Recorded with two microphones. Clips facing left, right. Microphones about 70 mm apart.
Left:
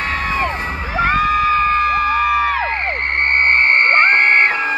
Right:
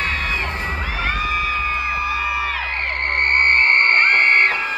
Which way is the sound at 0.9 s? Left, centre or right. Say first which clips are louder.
Left 9 dB; left.